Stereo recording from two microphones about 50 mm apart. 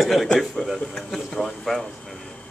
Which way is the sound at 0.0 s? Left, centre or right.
Centre.